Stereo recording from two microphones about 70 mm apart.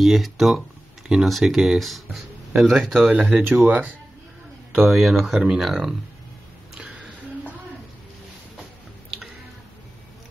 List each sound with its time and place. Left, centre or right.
0.0 s speech: centre
3.0 s speech: right
4.8 s speech: centre
6.8 s a sound: centre